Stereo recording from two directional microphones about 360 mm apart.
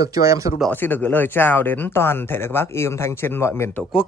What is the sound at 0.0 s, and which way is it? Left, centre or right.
Speech, centre.